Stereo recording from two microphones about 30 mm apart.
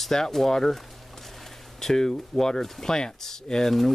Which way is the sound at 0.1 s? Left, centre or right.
Centre.